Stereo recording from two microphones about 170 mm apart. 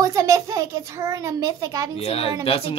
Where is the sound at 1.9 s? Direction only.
35° left (ahead or behind).